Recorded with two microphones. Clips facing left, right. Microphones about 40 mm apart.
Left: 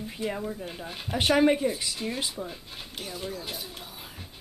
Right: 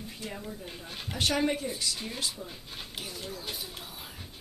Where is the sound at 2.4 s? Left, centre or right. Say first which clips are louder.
Left 3 dB; centre.